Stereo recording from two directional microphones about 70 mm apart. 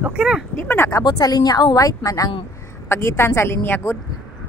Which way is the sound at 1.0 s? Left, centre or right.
Left.